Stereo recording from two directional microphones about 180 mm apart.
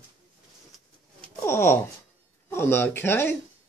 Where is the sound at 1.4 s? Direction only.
15° left (ahead or behind).